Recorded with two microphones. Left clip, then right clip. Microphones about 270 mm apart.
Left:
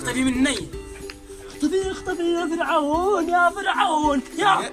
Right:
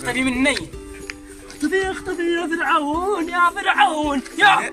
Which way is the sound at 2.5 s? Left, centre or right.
Centre.